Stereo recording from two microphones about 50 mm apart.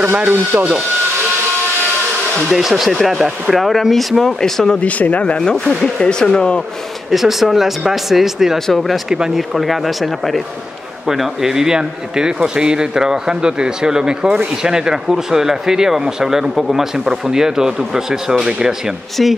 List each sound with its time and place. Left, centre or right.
0.0 s speech: right
2.5 s speech: centre
4.7 s speech: left
5.2 s speech: centre
7.1 s speech: centre
9.1 s speech: centre
9.6 s speech: centre